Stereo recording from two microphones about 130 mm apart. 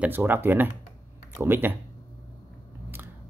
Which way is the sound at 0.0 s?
15° right (ahead or behind).